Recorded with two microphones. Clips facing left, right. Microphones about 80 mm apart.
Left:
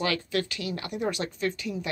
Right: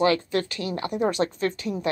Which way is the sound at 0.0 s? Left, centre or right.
Right.